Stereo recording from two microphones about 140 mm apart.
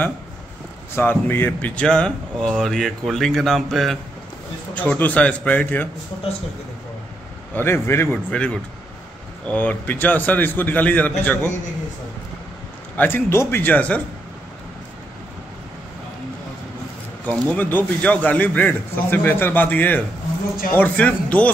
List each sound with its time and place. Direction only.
0.9 s speech: 15° left (ahead or behind)
4.7 s a man's voice: 10° left (ahead or behind)
7.5 s a man's voice: 15° left (ahead or behind)
12.9 s a man's voice: 15° left (ahead or behind)
17.3 s a man's voice: 10° left (ahead or behind)